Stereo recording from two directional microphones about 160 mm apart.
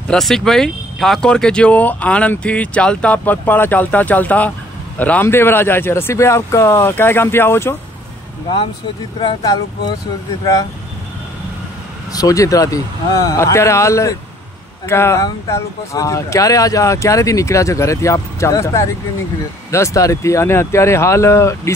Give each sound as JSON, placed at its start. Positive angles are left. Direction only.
{"t": 0.1, "sound": "speech", "side_deg": 5}
{"t": 9.2, "sound": "speech", "side_deg": 25}
{"t": 12.1, "sound": "speech", "side_deg": 20}